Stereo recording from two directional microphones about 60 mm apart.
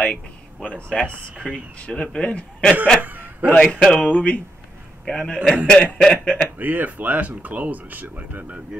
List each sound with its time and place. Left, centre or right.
0.0 s a sound: centre
0.7 s a man's voice: centre
3.0 s a sound: right
3.4 s a man's voice: centre
5.0 s a man's voice: centre
5.7 s speech: left
6.6 s speech: right